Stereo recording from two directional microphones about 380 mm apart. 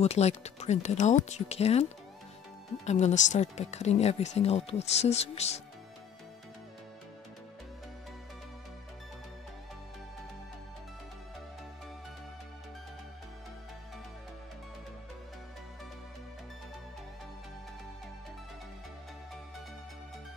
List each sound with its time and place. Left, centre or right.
0.0 s speech: centre